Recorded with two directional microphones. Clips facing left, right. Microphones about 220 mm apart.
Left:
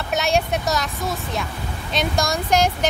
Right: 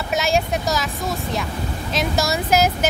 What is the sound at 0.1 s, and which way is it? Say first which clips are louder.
Speech: even; centre (ahead or behind).